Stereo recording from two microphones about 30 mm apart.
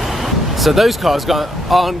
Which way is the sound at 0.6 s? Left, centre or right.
Centre.